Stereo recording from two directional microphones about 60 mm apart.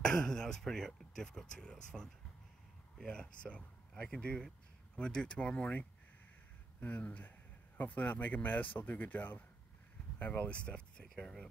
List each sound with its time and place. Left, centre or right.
0.0 s speech: centre
3.1 s speech: centre